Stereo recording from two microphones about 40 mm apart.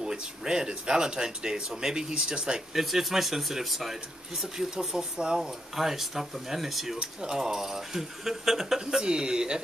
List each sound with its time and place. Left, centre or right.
0.0 s speech: centre
2.7 s speech: centre
5.8 s speech: centre
7.0 s speech: centre
9.0 s speech: right